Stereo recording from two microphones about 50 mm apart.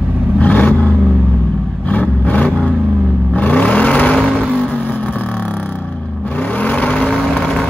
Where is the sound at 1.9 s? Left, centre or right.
Left.